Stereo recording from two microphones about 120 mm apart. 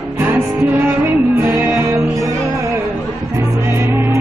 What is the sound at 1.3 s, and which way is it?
Music, 20° right (ahead or behind).